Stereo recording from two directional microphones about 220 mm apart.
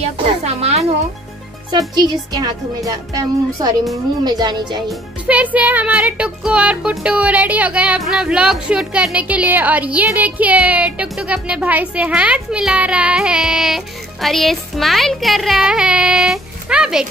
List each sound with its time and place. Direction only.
0.5 s a sound: 25° right (ahead or behind)
1.7 s speech: 15° right (ahead or behind)
5.2 s speech: 5° right (ahead or behind)